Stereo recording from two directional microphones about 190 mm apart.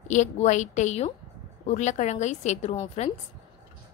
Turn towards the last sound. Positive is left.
turn(degrees=35)  # may be behind; listen again after turning